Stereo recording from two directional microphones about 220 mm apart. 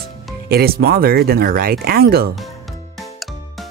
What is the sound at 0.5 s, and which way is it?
Speech, 45° right (ahead or behind).